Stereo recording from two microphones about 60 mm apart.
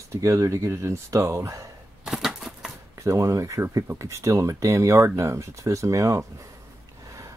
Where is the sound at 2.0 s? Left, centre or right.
Centre.